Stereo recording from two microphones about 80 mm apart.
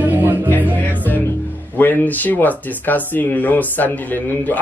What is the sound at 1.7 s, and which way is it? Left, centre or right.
A man's voice, left.